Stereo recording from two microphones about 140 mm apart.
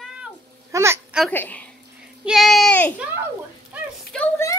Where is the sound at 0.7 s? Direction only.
20° right (ahead or behind).